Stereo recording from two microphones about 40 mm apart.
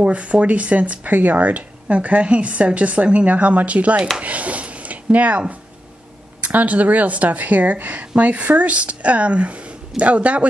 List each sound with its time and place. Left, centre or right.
0.0 s speech: right
6.5 s speech: right